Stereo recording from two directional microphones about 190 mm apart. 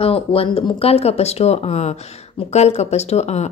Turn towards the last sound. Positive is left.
turn(degrees=35)  # may be behind; listen again after turning